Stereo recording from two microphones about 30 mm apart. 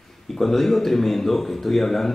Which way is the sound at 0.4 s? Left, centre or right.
Centre.